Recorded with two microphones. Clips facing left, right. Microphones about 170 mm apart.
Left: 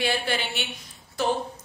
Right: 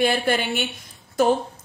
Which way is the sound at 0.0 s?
50° right (ahead or behind).